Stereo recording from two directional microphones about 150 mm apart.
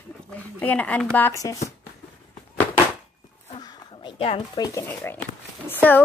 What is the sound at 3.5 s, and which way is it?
Speech, 30° left (ahead or behind).